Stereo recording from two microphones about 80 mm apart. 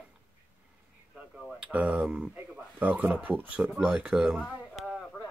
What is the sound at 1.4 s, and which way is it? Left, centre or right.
Speech, centre.